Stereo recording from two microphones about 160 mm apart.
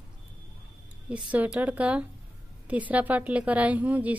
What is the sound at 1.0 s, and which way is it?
A woman's voice, 10° right (ahead or behind).